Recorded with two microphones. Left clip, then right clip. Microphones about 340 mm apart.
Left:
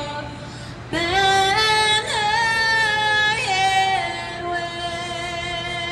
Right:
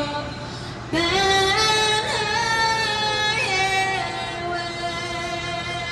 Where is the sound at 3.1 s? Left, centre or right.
Left.